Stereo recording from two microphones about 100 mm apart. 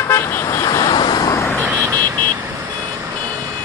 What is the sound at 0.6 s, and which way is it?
Vehicle, 40° left (ahead or behind).